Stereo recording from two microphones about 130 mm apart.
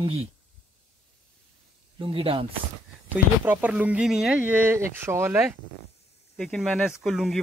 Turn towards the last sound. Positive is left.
turn(degrees=0)  # may be behind; listen again after turning